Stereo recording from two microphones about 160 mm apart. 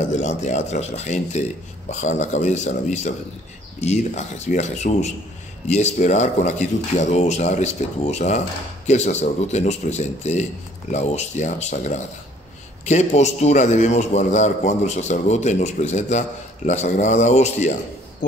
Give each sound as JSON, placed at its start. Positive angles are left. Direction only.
{"t": 0.1, "sound": "a man's voice", "side_deg": 45}